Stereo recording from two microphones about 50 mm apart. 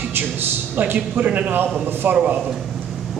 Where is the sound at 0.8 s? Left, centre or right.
Right.